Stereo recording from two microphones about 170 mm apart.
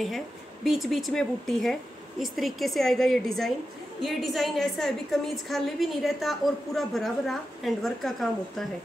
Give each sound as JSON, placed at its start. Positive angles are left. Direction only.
{"t": 0.7, "sound": "a woman's voice", "side_deg": 0}